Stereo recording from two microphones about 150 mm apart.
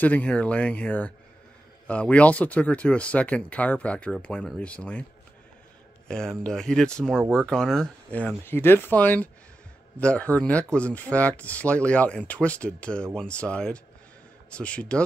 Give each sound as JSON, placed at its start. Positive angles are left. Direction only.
{"t": 0.0, "sound": "speech", "side_deg": 10}
{"t": 6.0, "sound": "speech", "side_deg": 5}